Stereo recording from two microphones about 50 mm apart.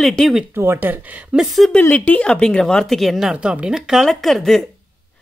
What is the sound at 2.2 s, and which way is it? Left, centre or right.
Speech, centre.